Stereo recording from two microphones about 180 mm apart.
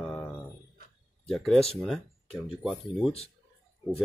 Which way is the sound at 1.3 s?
Centre (ahead or behind).